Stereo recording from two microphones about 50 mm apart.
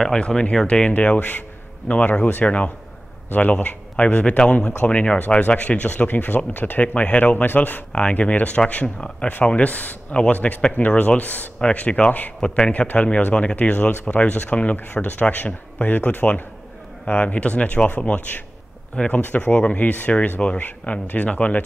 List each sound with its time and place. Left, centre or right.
0.0 s speech: centre; by 2.4 s left
2.4 s speech: left
3.3 s speech: left
3.9 s speech: left
7.9 s speech: left
12.4 s speech: centre
13.3 s speech: centre
13.6 s speech: left
17.0 s speech: left